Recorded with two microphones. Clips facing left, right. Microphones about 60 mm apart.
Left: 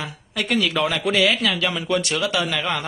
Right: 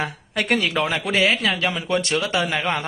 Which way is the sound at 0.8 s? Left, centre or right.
Right.